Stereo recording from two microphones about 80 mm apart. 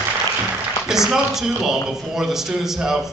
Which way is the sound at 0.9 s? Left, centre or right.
Centre.